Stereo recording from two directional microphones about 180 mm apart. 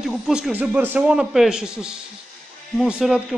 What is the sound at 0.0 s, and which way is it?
Speech, 5° right (ahead or behind).